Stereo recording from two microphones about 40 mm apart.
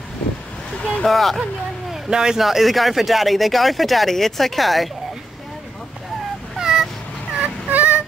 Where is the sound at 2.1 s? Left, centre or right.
Centre.